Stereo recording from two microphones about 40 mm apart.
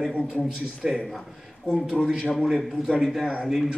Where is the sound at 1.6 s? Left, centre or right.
Right.